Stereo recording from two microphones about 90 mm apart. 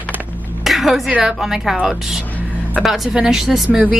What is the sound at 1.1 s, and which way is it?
A woman's voice, 10° right (ahead or behind).